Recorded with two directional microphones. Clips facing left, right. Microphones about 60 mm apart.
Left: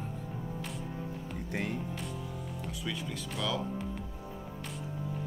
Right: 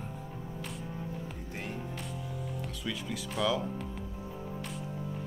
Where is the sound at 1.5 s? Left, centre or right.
Left.